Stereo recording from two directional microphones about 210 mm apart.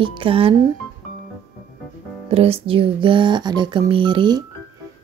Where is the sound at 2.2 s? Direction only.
30° right (ahead or behind).